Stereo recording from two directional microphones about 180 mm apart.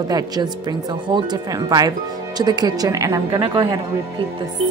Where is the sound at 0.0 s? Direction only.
20° right (ahead or behind).